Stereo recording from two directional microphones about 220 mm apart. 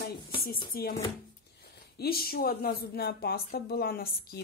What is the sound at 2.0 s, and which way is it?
A woman's voice, 45° left (ahead or behind).